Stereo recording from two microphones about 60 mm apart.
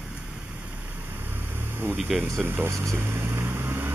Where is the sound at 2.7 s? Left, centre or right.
Right.